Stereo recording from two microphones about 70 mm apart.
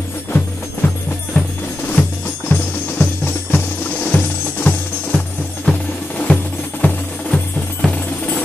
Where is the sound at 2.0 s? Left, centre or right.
Left.